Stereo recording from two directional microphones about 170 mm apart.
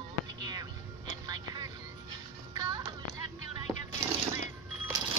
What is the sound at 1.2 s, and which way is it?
Music, 25° right (ahead or behind).